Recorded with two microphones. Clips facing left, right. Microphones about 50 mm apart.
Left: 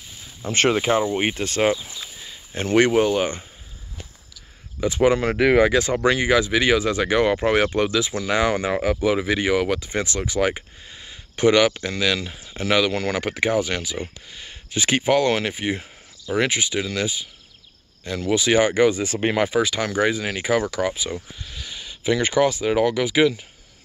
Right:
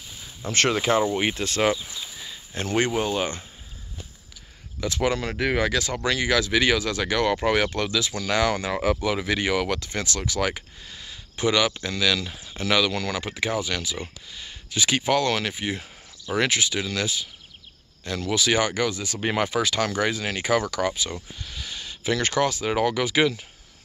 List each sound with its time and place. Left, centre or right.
0.4 s speech: centre
1.2 s speech: left
4.7 s speech: left
19.3 s speech: centre